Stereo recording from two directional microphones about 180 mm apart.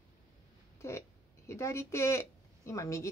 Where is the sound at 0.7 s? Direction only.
15° left (ahead or behind).